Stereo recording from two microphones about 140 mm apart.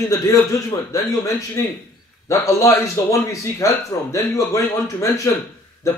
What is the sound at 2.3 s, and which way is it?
Speech, 25° left (ahead or behind).